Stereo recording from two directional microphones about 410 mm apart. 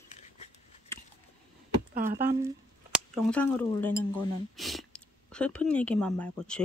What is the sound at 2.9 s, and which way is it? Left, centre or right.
Speech, centre.